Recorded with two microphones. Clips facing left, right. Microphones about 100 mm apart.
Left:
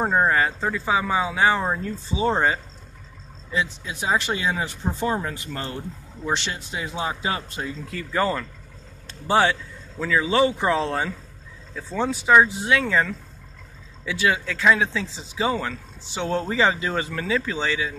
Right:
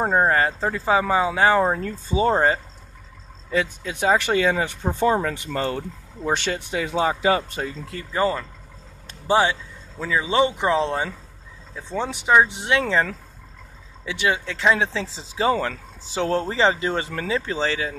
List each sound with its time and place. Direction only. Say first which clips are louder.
0.1 s speech: right 1 dB; 35° right (ahead or behind)
3.5 s speech: right 3 dB; 55° right (ahead or behind)
5.2 s speech: right 6 dB; 80° right
6.2 s speech: right 3 dB; 50° right (ahead or behind)
7.9 s speech: right 1 dB; 25° right (ahead or behind)
14.0 s speech: even; 25° right (ahead or behind)